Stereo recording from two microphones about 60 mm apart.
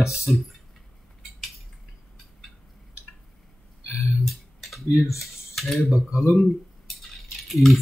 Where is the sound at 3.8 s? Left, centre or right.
Left.